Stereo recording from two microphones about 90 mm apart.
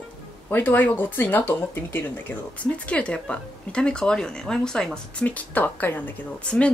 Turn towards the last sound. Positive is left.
turn(degrees=15)  # may be behind; listen again after turning